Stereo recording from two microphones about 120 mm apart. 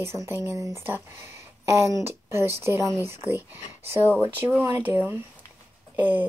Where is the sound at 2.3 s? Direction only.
20° right (ahead or behind).